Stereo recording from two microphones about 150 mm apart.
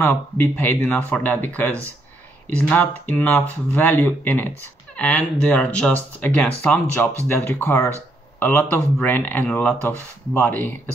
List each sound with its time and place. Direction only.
0.0 s speech: 15° left (ahead or behind)